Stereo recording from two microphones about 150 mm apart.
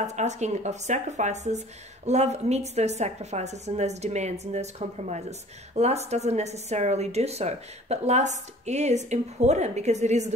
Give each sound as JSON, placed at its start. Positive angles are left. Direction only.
{"t": 0.0, "sound": "a woman's voice", "side_deg": -50}